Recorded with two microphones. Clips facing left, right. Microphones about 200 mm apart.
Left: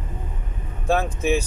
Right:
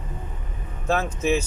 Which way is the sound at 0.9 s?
15° left (ahead or behind).